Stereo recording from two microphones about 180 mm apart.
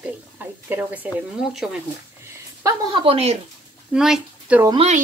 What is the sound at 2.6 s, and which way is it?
Speech, 25° right (ahead or behind).